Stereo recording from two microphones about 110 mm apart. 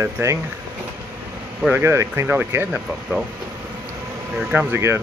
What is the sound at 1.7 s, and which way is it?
Speech, 25° right (ahead or behind).